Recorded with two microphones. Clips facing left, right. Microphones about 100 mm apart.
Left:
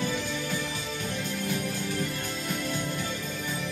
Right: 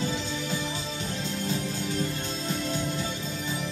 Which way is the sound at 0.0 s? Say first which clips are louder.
Even; 25° right (ahead or behind).